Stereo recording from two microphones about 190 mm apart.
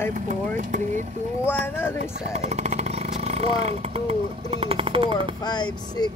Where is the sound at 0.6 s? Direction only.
40° right (ahead or behind).